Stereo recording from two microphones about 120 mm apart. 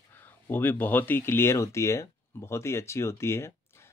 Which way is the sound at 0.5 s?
15° left (ahead or behind).